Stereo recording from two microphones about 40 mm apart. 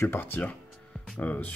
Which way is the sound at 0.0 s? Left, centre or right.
Left.